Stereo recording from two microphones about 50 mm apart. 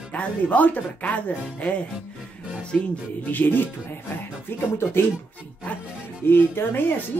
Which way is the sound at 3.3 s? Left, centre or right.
Left.